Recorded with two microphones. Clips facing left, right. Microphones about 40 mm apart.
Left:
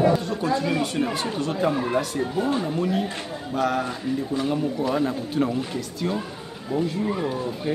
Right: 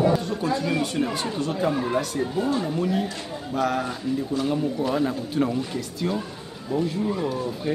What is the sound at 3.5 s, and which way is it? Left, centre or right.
Speech, centre.